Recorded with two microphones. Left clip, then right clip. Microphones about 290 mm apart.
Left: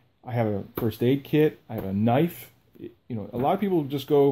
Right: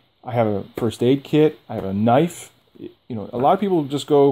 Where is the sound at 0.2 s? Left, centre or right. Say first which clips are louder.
Right 7 dB; right.